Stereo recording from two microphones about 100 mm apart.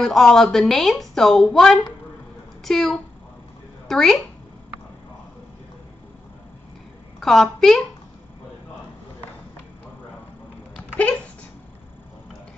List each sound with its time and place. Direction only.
0.0 s a woman's voice: centre (ahead or behind)
7.2 s a woman's voice: centre (ahead or behind)